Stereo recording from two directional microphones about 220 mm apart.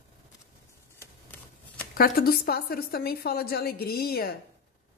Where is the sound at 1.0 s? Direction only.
10° left (ahead or behind).